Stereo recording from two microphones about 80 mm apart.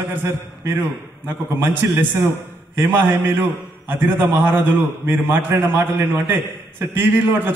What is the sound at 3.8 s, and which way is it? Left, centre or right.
A man's voice, right.